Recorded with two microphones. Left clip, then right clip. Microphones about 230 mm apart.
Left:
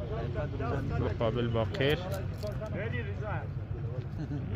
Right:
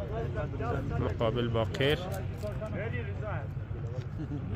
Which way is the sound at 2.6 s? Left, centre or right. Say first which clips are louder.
Even; left.